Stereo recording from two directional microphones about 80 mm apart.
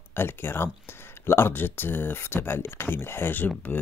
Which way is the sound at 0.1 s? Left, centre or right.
Left.